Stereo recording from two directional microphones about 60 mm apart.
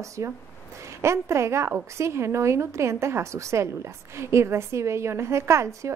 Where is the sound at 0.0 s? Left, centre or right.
Right.